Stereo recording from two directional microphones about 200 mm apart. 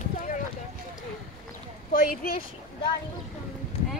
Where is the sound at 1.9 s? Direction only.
45° left (ahead or behind).